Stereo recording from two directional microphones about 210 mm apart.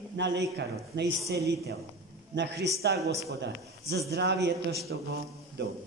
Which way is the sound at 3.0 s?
15° right (ahead or behind).